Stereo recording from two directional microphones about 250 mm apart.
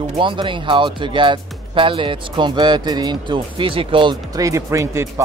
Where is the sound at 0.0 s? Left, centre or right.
Centre.